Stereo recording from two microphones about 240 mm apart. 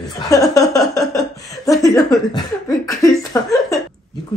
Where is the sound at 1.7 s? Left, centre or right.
Centre.